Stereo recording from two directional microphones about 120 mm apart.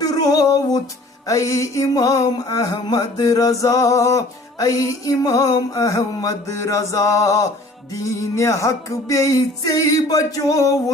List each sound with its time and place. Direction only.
0.0 s music: 30° left (ahead or behind)